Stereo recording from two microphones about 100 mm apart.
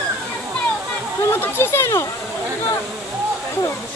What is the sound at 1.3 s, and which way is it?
Speech, 25° left (ahead or behind).